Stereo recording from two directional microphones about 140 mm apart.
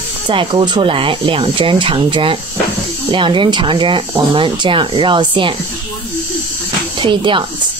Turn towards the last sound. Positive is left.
turn(degrees=-35)  # may be behind; listen again after turning